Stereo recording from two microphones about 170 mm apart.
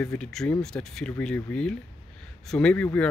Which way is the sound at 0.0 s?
5° left (ahead or behind).